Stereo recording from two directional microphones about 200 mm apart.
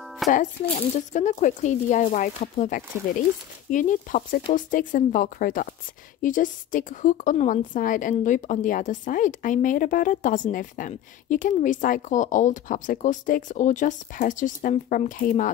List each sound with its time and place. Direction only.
0.3 s a woman's voice: 35° left (ahead or behind)